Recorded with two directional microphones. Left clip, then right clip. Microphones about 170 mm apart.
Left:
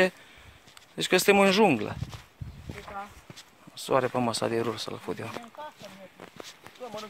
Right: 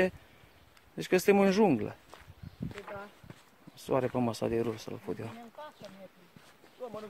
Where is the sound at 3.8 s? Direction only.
5° right (ahead or behind).